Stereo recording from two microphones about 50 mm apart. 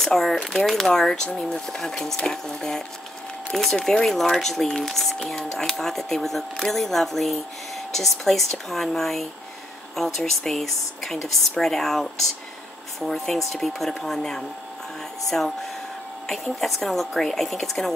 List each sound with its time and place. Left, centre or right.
0.0 s speech: centre
3.8 s speech: centre